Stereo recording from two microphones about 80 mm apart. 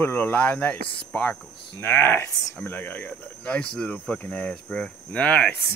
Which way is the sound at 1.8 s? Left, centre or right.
Left.